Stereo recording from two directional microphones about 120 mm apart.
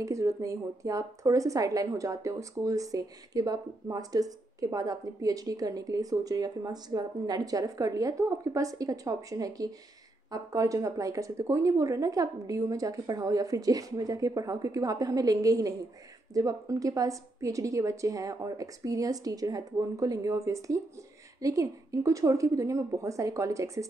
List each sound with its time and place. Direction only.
0.0 s a woman's voice: 25° right (ahead or behind)